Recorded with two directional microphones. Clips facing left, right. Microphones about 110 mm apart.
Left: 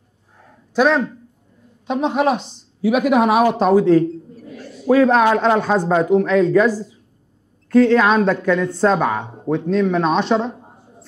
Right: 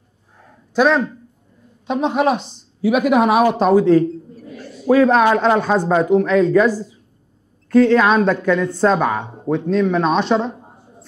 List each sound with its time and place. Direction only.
0.7 s speech: 15° right (ahead or behind)
10.4 s speech: 25° right (ahead or behind)